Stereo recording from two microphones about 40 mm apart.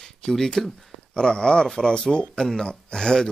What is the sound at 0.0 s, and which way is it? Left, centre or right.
Speech, centre.